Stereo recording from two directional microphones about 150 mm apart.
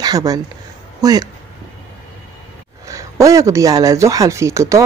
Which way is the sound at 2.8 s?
20° right (ahead or behind).